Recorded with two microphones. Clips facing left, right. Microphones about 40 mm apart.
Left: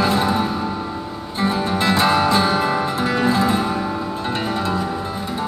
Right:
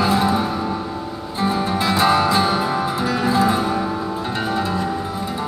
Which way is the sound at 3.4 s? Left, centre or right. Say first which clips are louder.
Right 1 dB; centre.